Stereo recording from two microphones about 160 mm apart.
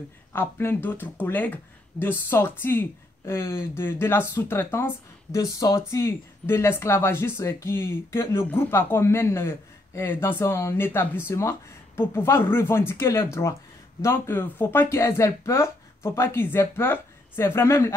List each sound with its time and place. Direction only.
0.3 s speech: 15° left (ahead or behind)